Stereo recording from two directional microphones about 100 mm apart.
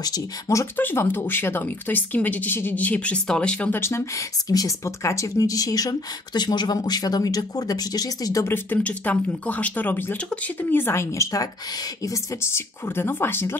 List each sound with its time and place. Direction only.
0.0 s speech: 35° left (ahead or behind)
0.7 s a woman's voice: 20° left (ahead or behind)
3.7 s speech: 25° left (ahead or behind)
8.5 s speech: 15° left (ahead or behind)